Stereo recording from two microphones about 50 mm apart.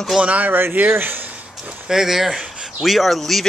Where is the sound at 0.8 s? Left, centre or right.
Right.